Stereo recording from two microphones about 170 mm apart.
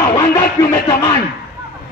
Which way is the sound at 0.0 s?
20° left (ahead or behind).